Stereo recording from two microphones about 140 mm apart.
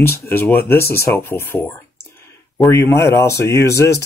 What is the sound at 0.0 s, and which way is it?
Speech, 15° left (ahead or behind).